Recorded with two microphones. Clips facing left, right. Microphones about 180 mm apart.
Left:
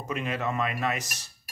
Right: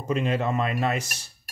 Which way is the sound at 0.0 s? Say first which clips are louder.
Right 5 dB; 30° right (ahead or behind).